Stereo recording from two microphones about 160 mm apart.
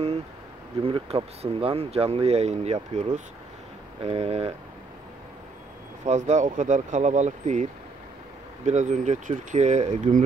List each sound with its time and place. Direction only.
0.8 s speech: 35° right (ahead or behind)
6.0 s speech: 50° right (ahead or behind)
8.6 s speech: 50° right (ahead or behind)